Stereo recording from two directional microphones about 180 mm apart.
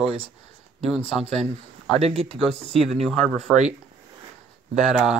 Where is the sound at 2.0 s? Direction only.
35° right (ahead or behind).